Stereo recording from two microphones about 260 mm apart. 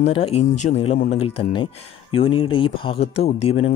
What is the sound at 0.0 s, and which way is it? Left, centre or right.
Speech, left.